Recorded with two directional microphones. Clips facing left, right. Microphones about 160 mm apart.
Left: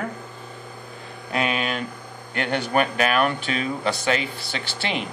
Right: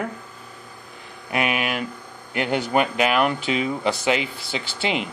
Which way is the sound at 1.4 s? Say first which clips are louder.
Right 1 dB; 10° right (ahead or behind).